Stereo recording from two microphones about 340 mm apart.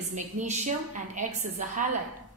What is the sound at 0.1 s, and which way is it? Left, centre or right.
A woman's voice, right.